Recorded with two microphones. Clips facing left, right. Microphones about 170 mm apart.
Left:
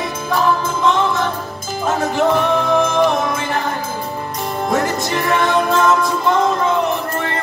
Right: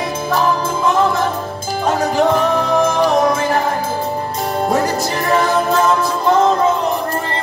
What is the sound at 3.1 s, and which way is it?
Music, 40° right (ahead or behind).